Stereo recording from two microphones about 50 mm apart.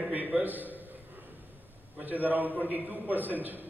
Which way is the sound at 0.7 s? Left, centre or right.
Right.